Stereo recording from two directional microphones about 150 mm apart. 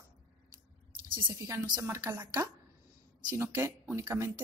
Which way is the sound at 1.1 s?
30° right (ahead or behind).